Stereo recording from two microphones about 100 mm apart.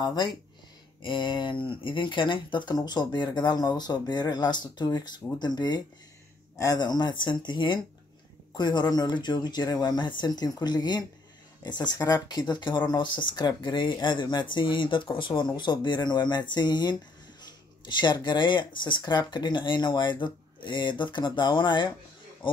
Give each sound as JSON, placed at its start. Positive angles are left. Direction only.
{"t": 0.0, "sound": "speech", "side_deg": 50}